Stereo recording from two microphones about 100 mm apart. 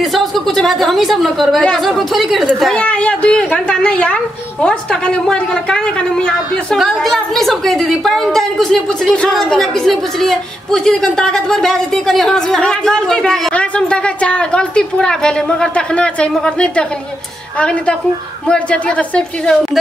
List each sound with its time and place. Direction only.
0.0 s a woman's voice: centre (ahead or behind)
2.7 s a woman's voice: 15° left (ahead or behind)